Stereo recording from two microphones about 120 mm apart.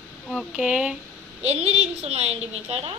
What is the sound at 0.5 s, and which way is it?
Speech, 10° right (ahead or behind).